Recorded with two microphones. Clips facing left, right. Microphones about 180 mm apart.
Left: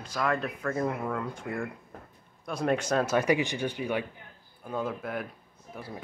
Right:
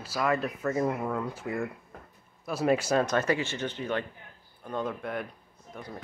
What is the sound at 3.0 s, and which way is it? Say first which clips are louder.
Speech: left 2 dB; 15° left (ahead or behind).